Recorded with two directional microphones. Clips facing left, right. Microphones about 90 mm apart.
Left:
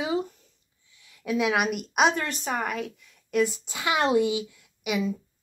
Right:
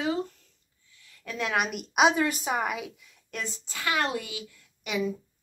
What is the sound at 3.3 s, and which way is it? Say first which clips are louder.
A woman's voice: left 12 dB; 10° left (ahead or behind).